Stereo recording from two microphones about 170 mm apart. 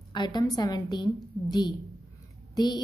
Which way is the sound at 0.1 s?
25° left (ahead or behind).